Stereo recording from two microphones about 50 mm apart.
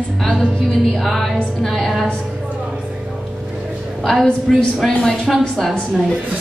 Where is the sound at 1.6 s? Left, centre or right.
Centre.